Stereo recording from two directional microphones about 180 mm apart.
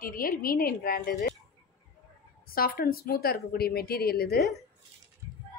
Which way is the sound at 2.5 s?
55° left (ahead or behind).